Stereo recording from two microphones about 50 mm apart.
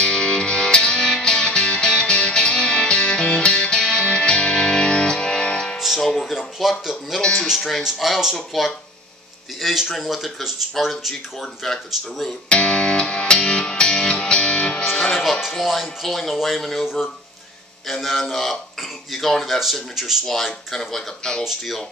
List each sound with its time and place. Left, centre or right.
0.0 s music: centre
5.9 s music: centre
6.3 s a sound: centre
7.2 s music: centre
7.4 s speech: centre
9.6 s speech: centre
12.4 s music: centre
15.5 s speech: centre
21.5 s speech: centre